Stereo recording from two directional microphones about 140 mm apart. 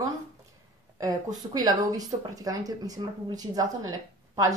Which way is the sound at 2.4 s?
25° right (ahead or behind).